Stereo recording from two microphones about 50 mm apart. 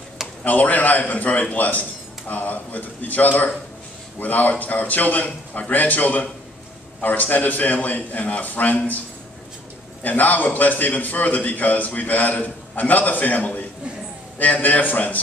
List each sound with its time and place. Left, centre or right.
0.4 s a man's voice: left
10.0 s a man's voice: left